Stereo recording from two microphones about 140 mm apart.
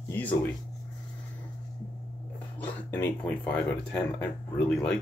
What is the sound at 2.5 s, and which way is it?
Speech, 15° left (ahead or behind).